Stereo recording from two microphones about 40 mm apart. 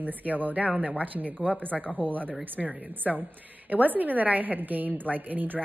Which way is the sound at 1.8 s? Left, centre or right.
Left.